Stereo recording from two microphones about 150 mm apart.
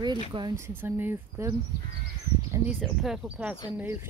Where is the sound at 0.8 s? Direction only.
15° right (ahead or behind).